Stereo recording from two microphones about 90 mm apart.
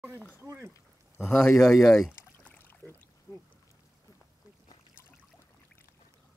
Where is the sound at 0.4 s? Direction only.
25° right (ahead or behind).